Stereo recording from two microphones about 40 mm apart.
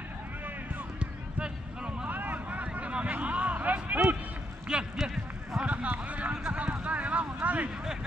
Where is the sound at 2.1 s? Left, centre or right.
Right.